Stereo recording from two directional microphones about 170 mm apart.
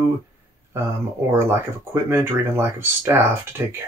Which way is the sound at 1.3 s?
15° right (ahead or behind).